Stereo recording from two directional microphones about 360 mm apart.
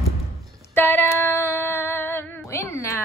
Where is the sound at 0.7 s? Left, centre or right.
Centre.